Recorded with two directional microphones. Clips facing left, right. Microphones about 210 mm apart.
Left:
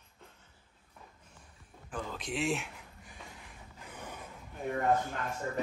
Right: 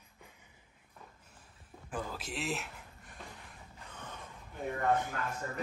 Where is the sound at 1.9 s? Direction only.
5° right (ahead or behind).